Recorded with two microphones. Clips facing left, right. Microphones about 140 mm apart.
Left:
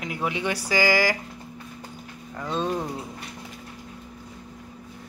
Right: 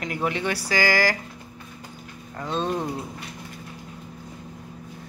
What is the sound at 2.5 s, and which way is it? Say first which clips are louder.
Speech: right 1 dB; centre (ahead or behind).